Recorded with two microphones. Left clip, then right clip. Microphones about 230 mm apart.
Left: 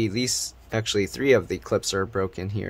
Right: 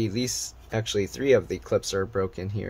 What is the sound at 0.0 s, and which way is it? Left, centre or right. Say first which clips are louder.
Speech: left 3 dB; centre.